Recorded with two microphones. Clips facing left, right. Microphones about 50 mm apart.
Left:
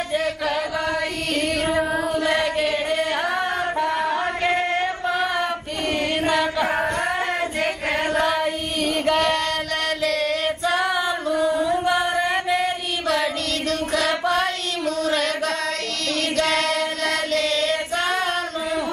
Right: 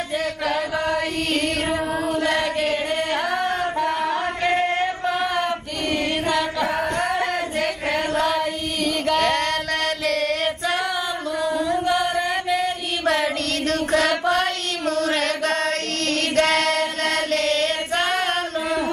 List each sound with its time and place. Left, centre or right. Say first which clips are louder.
0.9 s chant: right 1 dB; right
2.2 s chant: left 1 dB; centre
2.9 s singing: even; centre
3.8 s a sound: left 1 dB; left
4.1 s music: even; centre
6.2 s chant: left 1 dB; centre
6.7 s a sound: even; left
8.1 s child singing: left 1 dB; centre
10.0 s a sound: left 1 dB; right
11.3 s chant: left 1 dB; centre
13.7 s chant: right 3 dB; right
16.3 s female singing: right 3 dB; right